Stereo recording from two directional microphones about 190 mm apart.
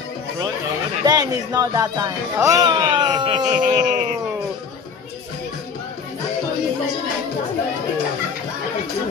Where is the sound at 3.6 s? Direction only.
45° right (ahead or behind).